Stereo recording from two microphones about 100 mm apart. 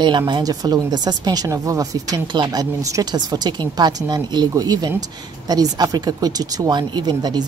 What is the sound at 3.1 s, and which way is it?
Speech, 45° right (ahead or behind).